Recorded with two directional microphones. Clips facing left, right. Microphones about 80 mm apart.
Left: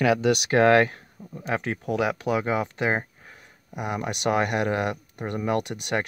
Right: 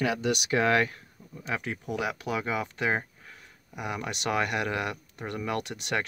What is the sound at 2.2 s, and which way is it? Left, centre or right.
Speech, left.